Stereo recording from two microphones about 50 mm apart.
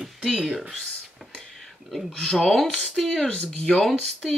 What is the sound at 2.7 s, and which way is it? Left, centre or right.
Speech, centre.